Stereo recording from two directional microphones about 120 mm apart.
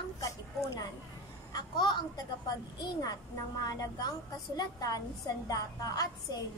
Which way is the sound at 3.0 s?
35° left (ahead or behind).